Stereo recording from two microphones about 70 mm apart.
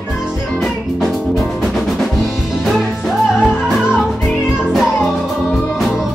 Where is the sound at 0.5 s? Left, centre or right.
Centre.